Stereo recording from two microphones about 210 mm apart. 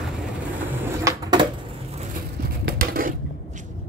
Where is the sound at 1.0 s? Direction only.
20° right (ahead or behind).